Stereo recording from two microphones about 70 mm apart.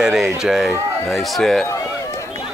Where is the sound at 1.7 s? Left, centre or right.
Left.